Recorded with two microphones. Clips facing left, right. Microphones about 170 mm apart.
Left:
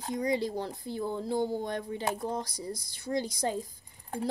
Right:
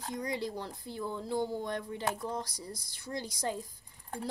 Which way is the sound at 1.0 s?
35° left (ahead or behind).